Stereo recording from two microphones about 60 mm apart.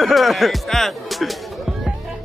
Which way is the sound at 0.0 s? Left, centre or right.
Centre.